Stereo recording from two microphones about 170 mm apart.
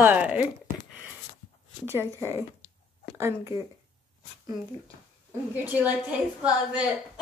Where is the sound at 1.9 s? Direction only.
15° right (ahead or behind).